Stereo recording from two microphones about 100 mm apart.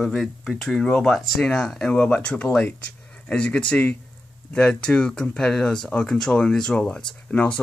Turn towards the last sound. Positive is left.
turn(degrees=10)  # may be behind; listen again after turning